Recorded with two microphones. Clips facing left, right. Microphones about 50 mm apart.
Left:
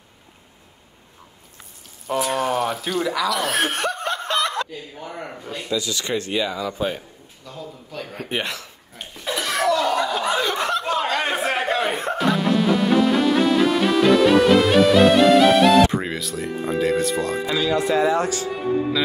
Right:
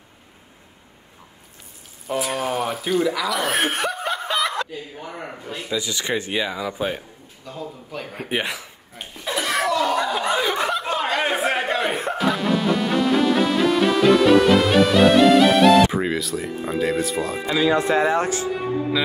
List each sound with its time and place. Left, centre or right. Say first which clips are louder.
2.0 s chuckle: left 2 dB; centre
5.7 s speech: even; right
7.4 s a sound: right 3 dB; centre
17.6 s speech: right 1 dB; right
18.5 s speech: left 1 dB; centre